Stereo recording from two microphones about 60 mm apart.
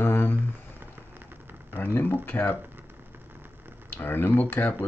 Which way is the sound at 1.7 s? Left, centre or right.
Left.